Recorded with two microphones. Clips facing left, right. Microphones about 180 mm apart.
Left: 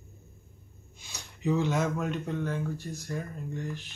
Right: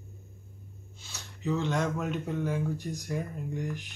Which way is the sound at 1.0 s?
15° left (ahead or behind).